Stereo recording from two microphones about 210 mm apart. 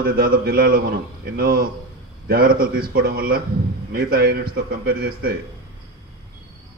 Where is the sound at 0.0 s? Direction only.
45° right (ahead or behind).